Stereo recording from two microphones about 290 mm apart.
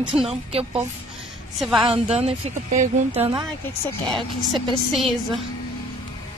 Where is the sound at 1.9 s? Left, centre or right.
Right.